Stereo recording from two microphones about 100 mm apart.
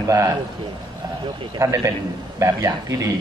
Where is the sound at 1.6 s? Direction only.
30° right (ahead or behind).